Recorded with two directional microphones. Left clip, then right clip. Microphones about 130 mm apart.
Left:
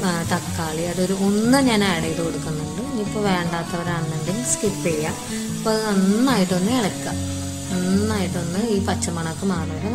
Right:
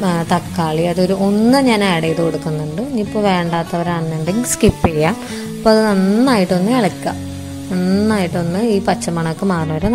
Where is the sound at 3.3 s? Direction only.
50° right (ahead or behind).